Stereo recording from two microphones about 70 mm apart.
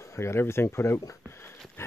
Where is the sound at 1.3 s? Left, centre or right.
Left.